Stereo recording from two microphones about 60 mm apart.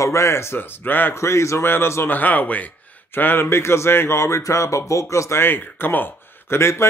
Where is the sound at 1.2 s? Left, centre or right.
Left.